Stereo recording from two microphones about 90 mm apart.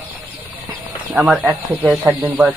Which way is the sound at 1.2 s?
15° right (ahead or behind).